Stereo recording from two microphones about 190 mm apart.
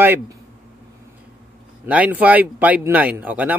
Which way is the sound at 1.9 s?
5° right (ahead or behind).